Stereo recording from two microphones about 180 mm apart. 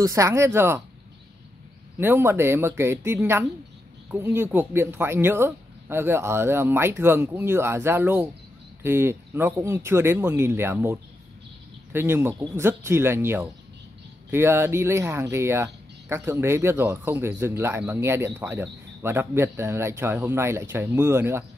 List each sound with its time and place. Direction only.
0.0 s speech: 15° right (ahead or behind)
2.0 s speech: 10° right (ahead or behind)